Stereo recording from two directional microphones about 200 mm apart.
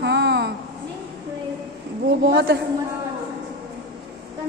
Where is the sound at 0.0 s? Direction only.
55° right (ahead or behind).